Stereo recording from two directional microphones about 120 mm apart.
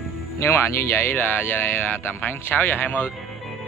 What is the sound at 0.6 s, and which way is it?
Speech, 20° left (ahead or behind).